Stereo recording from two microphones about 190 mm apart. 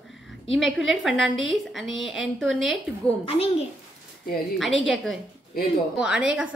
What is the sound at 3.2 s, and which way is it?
Speech, 30° left (ahead or behind).